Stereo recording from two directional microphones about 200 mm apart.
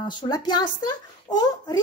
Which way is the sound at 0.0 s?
20° left (ahead or behind).